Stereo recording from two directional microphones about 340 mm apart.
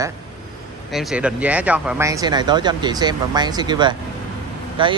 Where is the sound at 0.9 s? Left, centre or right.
Centre.